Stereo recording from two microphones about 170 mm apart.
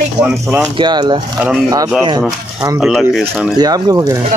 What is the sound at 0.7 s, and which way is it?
Speech, 25° right (ahead or behind).